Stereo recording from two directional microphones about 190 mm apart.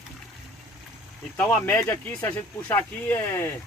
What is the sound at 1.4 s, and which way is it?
Speech, 15° left (ahead or behind).